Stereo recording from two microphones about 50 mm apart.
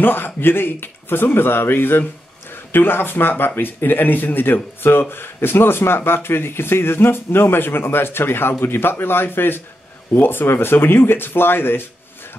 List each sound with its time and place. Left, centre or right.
0.0 s speech: left